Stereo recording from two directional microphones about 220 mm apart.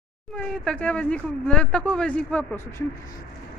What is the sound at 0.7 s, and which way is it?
A man's voice, 5° left (ahead or behind).